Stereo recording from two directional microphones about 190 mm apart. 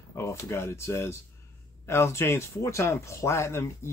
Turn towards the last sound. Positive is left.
turn(degrees=15)  # may be behind; listen again after turning